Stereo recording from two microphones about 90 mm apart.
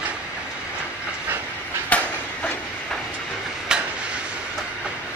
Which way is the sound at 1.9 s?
15° left (ahead or behind).